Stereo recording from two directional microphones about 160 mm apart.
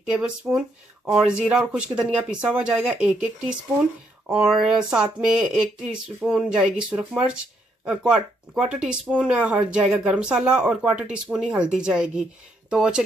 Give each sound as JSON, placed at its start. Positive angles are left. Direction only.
{"t": 0.6, "sound": "speech", "side_deg": -5}
{"t": 4.3, "sound": "speech", "side_deg": 0}